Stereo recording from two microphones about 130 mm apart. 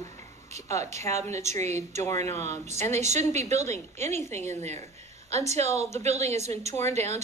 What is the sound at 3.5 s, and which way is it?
Speech, 60° right (ahead or behind).